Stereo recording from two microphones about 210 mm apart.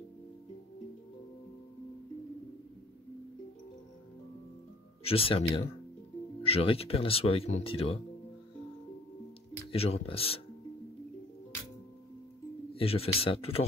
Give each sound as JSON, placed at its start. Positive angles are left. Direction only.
{"t": 5.0, "sound": "speech", "side_deg": 25}
{"t": 6.4, "sound": "speech", "side_deg": 25}
{"t": 9.7, "sound": "speech", "side_deg": 30}
{"t": 12.7, "sound": "speech", "side_deg": 30}